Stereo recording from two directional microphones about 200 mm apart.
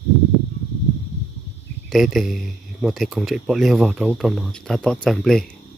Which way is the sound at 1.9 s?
Centre (ahead or behind).